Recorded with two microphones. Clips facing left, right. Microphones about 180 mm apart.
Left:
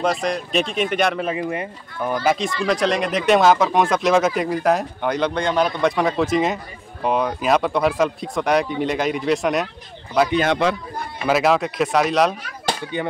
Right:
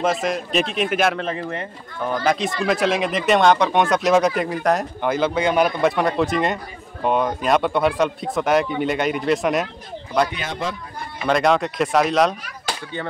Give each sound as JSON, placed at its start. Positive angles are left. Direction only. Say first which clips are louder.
{"t": 0.0, "sound": "speech", "louder": "even", "side_deg": -5}
{"t": 1.2, "sound": "speech", "louder": "left 3 dB", "side_deg": 10}
{"t": 2.2, "sound": "speech", "louder": "even", "side_deg": 0}
{"t": 10.4, "sound": "a man's voice", "louder": "left 8 dB", "side_deg": 75}
{"t": 11.2, "sound": "speech", "louder": "even", "side_deg": 5}
{"t": 12.9, "sound": "speech", "louder": "left 3 dB", "side_deg": 15}